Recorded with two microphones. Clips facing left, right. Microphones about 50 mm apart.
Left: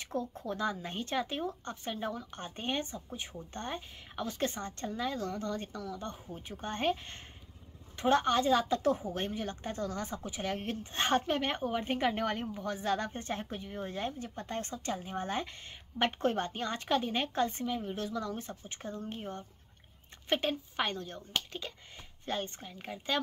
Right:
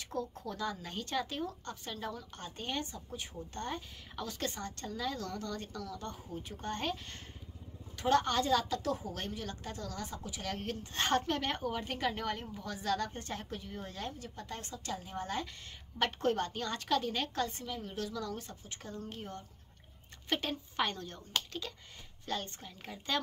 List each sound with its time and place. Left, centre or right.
0.1 s speech: left